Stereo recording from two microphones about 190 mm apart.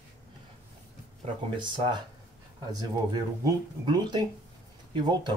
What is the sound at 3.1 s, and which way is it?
Speech, 25° right (ahead or behind).